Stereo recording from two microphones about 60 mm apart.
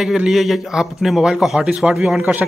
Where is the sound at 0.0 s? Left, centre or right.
Centre.